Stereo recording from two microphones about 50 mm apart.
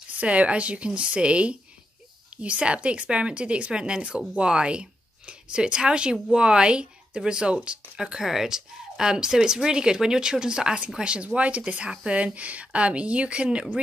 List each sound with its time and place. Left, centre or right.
0.2 s a woman's voice: right